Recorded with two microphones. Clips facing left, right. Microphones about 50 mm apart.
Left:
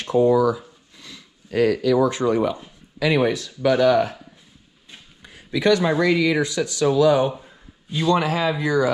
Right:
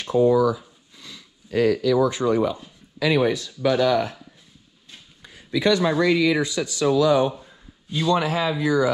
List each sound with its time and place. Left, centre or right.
0.0 s a sound: left
2.0 s speech: left
5.5 s speech: left